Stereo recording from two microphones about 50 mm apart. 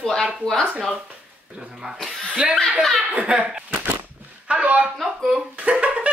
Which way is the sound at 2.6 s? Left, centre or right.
Centre.